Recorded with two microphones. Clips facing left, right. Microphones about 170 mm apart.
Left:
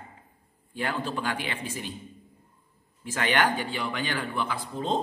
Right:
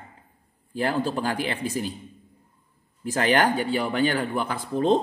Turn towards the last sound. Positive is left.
turn(degrees=-60)  # may be behind; listen again after turning